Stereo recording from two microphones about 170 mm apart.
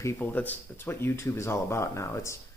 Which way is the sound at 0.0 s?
10° left (ahead or behind).